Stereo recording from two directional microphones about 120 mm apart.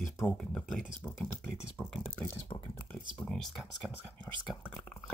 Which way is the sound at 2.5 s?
45° left (ahead or behind).